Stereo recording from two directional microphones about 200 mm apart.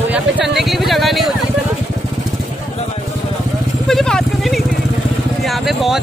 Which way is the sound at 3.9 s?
Centre (ahead or behind).